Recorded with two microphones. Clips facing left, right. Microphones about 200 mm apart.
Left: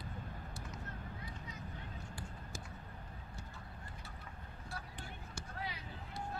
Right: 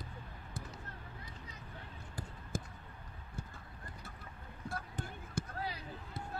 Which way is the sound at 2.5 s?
50° right (ahead or behind).